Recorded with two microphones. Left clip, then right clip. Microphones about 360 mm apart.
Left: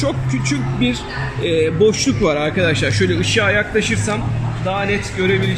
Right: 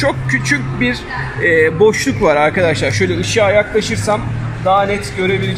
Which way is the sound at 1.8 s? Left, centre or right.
Centre.